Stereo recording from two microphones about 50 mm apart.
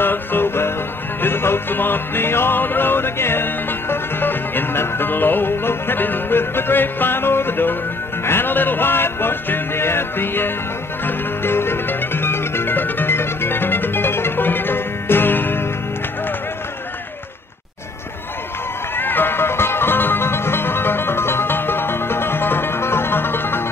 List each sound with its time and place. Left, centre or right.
0.0 s music: left
18.9 s music: left